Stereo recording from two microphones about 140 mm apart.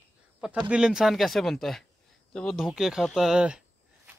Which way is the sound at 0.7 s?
5° right (ahead or behind).